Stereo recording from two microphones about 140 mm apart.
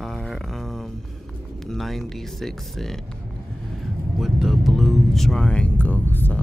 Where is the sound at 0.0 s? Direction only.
Centre (ahead or behind).